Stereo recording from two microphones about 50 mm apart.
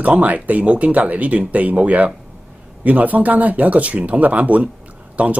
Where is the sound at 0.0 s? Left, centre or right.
Right.